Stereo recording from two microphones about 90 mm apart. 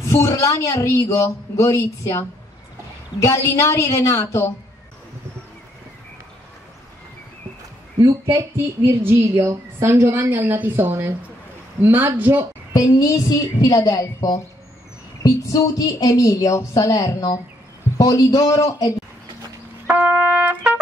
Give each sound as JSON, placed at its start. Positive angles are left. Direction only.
{"t": 0.1, "sound": "speech", "side_deg": 35}
{"t": 8.0, "sound": "speech", "side_deg": -35}
{"t": 12.7, "sound": "a woman's voice", "side_deg": 35}
{"t": 20.3, "sound": "trumpet", "side_deg": -15}